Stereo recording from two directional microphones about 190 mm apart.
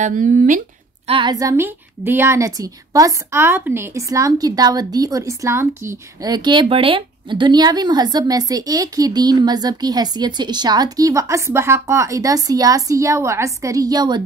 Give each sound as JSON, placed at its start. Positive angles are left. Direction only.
{"t": 0.0, "sound": "speech", "side_deg": -45}
{"t": 1.0, "sound": "a woman's voice", "side_deg": -25}